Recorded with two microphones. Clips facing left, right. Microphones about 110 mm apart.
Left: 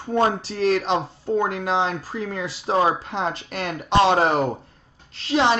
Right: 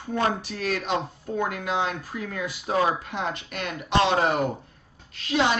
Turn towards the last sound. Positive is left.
turn(degrees=30)  # may be behind; listen again after turning